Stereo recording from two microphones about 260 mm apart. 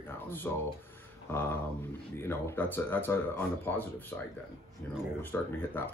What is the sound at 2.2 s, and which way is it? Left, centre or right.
Speech, centre.